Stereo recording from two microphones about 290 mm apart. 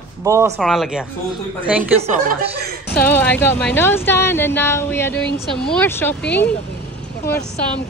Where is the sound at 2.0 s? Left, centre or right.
Right.